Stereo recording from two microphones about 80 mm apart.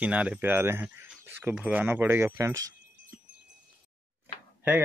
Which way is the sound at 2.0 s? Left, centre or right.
Right.